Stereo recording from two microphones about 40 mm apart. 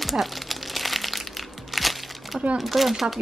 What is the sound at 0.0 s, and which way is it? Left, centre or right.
Crumpling, centre.